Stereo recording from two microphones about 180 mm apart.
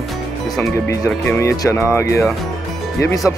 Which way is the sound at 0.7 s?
15° left (ahead or behind).